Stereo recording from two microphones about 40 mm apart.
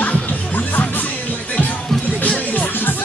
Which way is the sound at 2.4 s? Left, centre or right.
Left.